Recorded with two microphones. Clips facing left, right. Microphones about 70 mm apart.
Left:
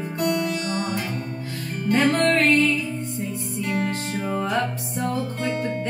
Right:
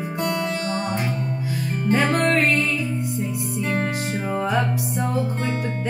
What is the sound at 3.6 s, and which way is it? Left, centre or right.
Music, right.